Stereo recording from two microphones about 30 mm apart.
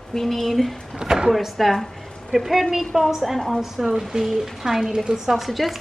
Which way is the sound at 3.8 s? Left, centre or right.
Centre.